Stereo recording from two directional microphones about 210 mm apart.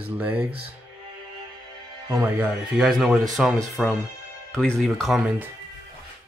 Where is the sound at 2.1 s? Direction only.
10° right (ahead or behind).